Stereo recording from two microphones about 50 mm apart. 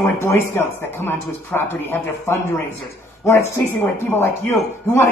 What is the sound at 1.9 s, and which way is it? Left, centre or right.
Speech, left.